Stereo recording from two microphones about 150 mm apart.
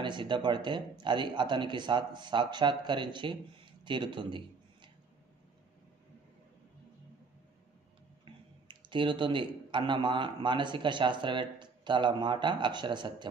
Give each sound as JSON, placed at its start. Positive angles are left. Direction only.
{"t": 0.0, "sound": "speech", "side_deg": -30}
{"t": 8.3, "sound": "speech", "side_deg": -35}